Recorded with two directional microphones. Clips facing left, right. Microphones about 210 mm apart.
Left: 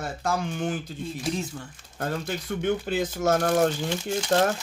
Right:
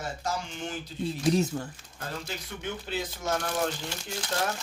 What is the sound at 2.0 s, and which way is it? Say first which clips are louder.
Speech: left 8 dB; 55° left (ahead or behind).